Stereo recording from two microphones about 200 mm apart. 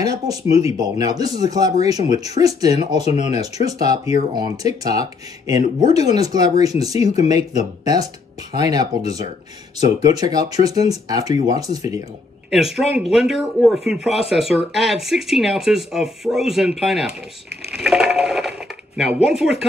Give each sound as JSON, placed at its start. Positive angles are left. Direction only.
{"t": 0.0, "sound": "speech", "side_deg": -20}
{"t": 12.4, "sound": "speech", "side_deg": 0}